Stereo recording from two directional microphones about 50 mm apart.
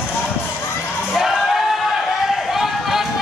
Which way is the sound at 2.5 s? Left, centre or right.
Centre.